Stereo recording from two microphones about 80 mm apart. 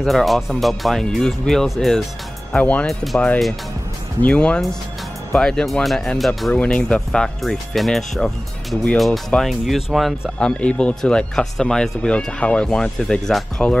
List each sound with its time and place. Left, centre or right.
0.0 s speech: centre
2.5 s speech: centre
2.9 s speech: centre
4.2 s speech: centre
6.5 s speech: centre
10.4 s speech: centre